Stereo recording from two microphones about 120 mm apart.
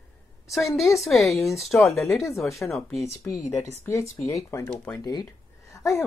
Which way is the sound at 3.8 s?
25° left (ahead or behind).